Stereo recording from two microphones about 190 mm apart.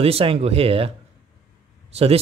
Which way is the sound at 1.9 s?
30° right (ahead or behind).